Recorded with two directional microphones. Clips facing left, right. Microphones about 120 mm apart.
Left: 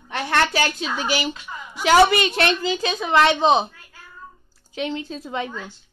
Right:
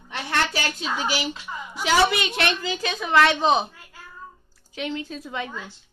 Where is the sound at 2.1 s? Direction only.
40° left (ahead or behind).